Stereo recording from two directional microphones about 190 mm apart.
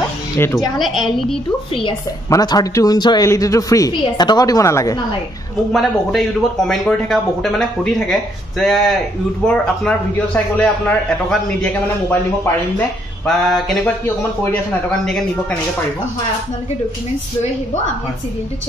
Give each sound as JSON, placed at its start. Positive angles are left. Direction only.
{"t": 0.4, "sound": "a man's voice", "side_deg": 15}
{"t": 0.7, "sound": "speech", "side_deg": 0}
{"t": 1.8, "sound": "a woman's voice", "side_deg": 20}
{"t": 5.7, "sound": "a man's voice", "side_deg": 0}